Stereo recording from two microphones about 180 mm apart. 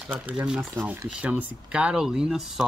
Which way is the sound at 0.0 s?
10° right (ahead or behind).